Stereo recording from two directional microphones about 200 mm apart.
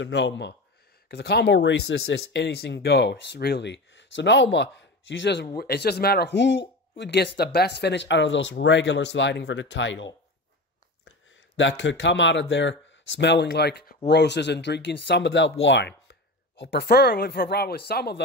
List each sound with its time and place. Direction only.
0.0 s speech: 60° left (ahead or behind)
11.1 s speech: 65° left (ahead or behind)